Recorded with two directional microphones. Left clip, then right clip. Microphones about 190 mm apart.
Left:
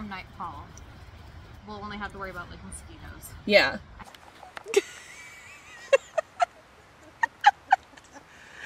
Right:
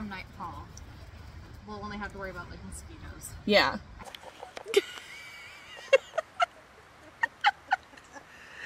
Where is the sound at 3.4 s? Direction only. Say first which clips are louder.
Left 3 dB; 15° right (ahead or behind).